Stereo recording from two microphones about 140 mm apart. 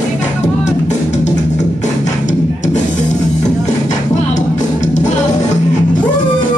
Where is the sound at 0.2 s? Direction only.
55° left (ahead or behind).